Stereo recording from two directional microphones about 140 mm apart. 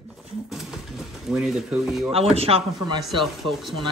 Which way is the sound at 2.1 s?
45° right (ahead or behind).